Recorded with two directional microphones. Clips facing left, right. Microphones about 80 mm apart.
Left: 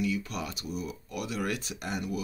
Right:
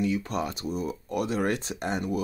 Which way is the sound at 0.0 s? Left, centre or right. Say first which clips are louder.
Right 4 dB; right.